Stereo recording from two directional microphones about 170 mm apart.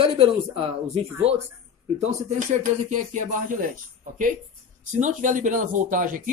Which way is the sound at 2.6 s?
50° right (ahead or behind).